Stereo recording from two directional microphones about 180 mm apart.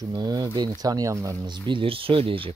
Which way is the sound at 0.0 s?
20° right (ahead or behind).